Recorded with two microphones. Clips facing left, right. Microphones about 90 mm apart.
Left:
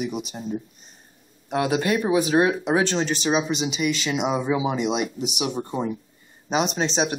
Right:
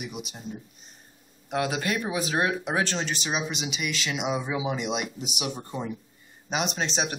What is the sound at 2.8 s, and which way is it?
Speech, centre (ahead or behind).